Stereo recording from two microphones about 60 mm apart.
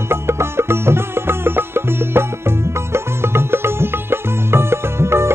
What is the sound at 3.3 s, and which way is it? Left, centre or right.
Music, right.